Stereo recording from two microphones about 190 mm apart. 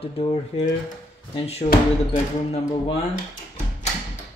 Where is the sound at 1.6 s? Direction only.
45° left (ahead or behind).